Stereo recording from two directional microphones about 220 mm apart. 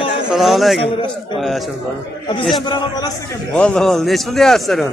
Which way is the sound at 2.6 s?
20° left (ahead or behind).